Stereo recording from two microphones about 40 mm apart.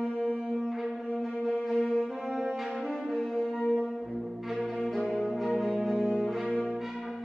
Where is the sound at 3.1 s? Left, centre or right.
Centre.